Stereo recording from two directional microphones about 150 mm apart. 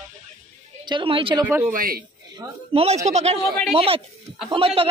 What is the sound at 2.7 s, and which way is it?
Speech, 45° right (ahead or behind).